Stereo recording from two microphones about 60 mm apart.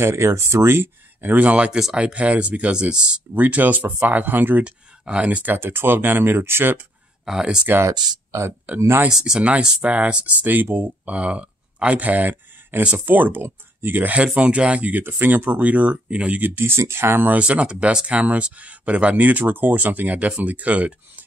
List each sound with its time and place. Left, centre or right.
0.0 s speech: right
1.2 s speech: right
3.3 s speech: right
4.6 s speech: centre
5.5 s speech: right
7.2 s speech: centre
7.8 s speech: right
9.1 s speech: centre; by 11.1 s right
11.1 s speech: centre; by 14.1 s right
14.1 s speech: centre; by 17.3 s right
17.3 s speech: right